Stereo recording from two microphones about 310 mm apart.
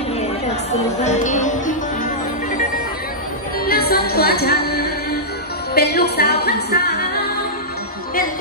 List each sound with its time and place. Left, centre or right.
0.9 s music: left
3.6 s music: left